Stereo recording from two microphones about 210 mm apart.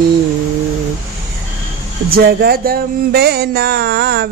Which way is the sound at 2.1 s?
45° right (ahead or behind).